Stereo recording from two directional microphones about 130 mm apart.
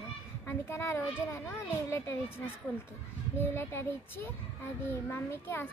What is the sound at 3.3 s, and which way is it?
Speech, 15° left (ahead or behind).